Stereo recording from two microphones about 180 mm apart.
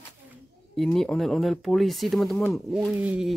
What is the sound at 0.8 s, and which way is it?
Speech, 5° left (ahead or behind).